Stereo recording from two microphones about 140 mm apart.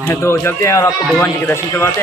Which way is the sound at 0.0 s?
15° left (ahead or behind).